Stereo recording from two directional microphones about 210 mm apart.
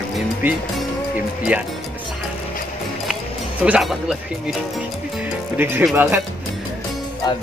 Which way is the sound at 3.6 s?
5° right (ahead or behind).